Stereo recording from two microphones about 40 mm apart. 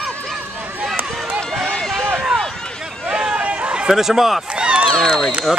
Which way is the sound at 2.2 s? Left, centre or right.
Centre.